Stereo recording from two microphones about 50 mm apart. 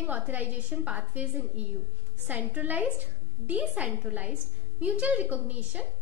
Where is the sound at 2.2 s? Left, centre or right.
Right.